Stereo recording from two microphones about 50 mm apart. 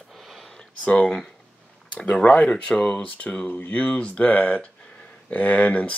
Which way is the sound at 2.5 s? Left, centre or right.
Left.